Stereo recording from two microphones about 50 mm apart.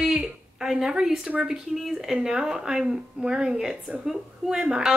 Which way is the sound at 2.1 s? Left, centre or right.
Centre.